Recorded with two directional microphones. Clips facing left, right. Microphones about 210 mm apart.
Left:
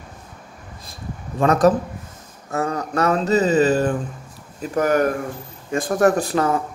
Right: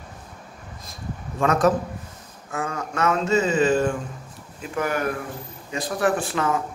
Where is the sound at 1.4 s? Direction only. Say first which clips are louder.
Left 4 dB; 35° left (ahead or behind).